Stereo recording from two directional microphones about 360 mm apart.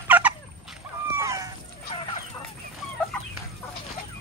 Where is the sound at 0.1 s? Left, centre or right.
Centre.